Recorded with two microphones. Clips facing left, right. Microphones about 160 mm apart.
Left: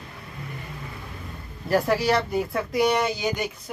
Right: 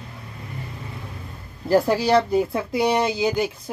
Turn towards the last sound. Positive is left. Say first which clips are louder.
# right 5 dB
turn(degrees=-30)  # may be behind; listen again after turning